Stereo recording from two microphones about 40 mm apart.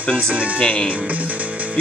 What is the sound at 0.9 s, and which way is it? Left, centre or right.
Music, right.